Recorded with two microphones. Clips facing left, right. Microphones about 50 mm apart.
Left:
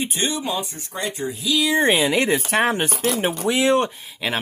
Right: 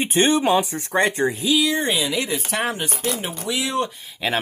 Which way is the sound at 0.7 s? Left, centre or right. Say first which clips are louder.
Right 8 dB; right.